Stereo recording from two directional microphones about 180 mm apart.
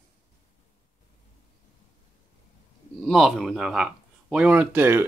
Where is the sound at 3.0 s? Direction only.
Centre (ahead or behind).